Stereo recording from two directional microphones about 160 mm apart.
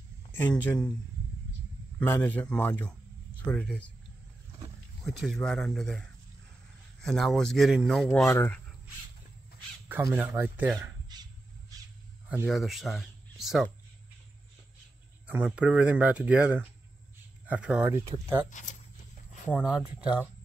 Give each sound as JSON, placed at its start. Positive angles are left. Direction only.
{"t": 0.3, "sound": "a man's voice", "side_deg": 10}
{"t": 2.0, "sound": "a man's voice", "side_deg": 10}
{"t": 5.0, "sound": "speech", "side_deg": 0}
{"t": 8.3, "sound": "a man's voice", "side_deg": 15}
{"t": 9.8, "sound": "speech", "side_deg": -10}
{"t": 11.1, "sound": "a sound", "side_deg": -25}
{"t": 12.4, "sound": "speech", "side_deg": 0}
{"t": 15.2, "sound": "speech", "side_deg": -10}
{"t": 18.5, "sound": "speech", "side_deg": 50}
{"t": 19.6, "sound": "speech", "side_deg": -5}